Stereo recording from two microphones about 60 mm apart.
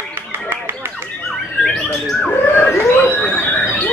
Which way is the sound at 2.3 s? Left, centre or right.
Left.